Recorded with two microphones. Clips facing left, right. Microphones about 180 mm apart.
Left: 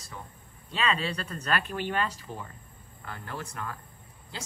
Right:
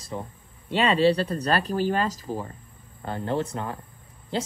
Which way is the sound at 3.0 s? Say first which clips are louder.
Right 12 dB; 25° right (ahead or behind).